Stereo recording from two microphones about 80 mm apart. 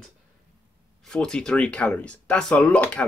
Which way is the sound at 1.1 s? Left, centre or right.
Centre.